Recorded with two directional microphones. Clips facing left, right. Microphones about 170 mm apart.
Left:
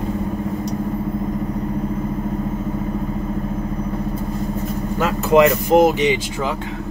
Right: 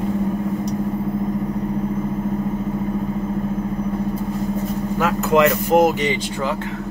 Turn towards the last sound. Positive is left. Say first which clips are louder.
# left 2 dB
turn(degrees=5)  # may be behind; listen again after turning